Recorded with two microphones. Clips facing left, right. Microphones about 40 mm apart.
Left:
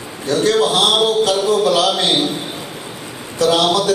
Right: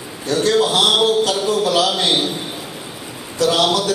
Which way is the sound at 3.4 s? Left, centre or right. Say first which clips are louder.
Left 2 dB; centre.